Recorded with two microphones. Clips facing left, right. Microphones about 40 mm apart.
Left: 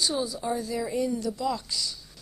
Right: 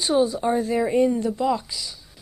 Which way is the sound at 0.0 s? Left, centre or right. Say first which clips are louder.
Right 8 dB; right.